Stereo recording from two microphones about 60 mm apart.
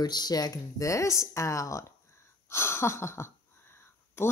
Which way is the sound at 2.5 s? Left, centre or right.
Left.